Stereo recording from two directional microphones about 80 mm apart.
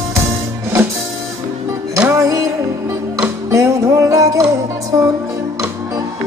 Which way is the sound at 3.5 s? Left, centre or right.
Right.